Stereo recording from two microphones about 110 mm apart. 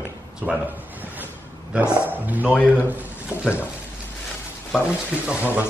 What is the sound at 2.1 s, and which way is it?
Speech, 15° right (ahead or behind).